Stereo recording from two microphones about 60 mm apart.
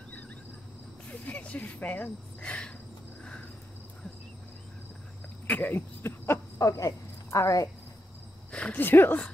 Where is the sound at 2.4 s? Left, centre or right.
Centre.